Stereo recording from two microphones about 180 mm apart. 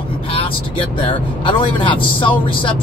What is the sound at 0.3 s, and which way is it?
Speech, 30° left (ahead or behind).